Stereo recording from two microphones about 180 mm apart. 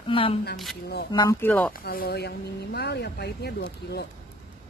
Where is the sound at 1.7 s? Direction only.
55° left (ahead or behind).